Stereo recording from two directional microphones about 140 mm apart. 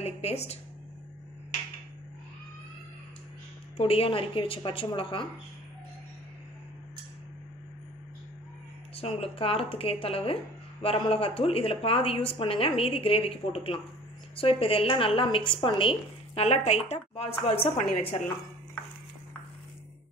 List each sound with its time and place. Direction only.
0.0 s speech: 50° left (ahead or behind)
3.7 s a woman's voice: 45° left (ahead or behind)
8.9 s a woman's voice: 45° left (ahead or behind)